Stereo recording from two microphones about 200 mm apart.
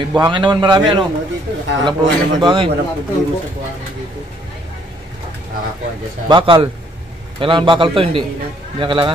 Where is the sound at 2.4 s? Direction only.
25° right (ahead or behind).